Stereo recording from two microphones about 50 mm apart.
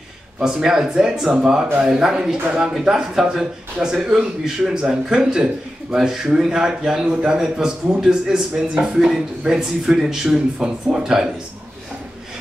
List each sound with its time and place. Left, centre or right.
0.4 s a man's voice: centre